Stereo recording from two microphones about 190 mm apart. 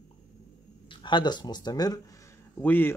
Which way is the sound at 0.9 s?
25° left (ahead or behind).